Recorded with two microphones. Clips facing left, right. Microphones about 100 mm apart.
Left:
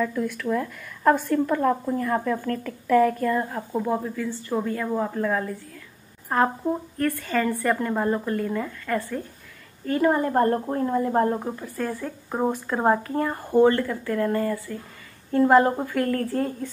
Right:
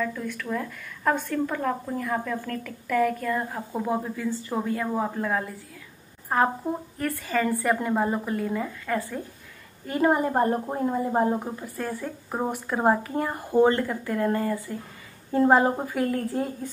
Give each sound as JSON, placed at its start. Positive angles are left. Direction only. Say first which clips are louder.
{"t": 0.0, "sound": "a woman's voice", "louder": "left 4 dB", "side_deg": 5}